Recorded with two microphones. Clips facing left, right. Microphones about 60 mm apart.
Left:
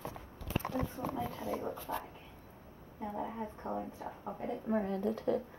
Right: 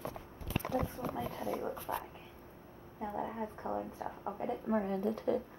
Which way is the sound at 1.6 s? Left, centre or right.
Centre.